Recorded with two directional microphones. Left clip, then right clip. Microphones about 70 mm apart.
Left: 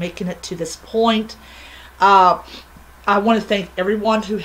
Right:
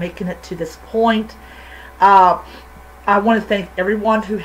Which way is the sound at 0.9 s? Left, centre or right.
Centre.